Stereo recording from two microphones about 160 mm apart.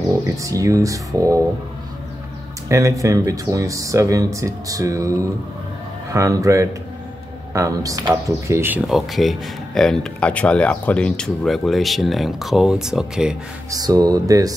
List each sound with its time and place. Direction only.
0.3 s speech: 20° right (ahead or behind)
2.7 s speech: 20° right (ahead or behind)
8.8 s speech: centre (ahead or behind)
13.7 s speech: 25° right (ahead or behind)